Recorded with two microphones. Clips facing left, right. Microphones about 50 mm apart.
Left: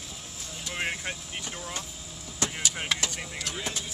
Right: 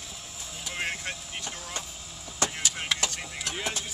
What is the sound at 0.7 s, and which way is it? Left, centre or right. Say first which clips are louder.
Vehicle: left 1 dB; centre.